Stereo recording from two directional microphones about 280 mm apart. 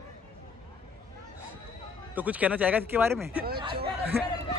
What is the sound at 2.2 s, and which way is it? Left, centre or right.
Speech, centre.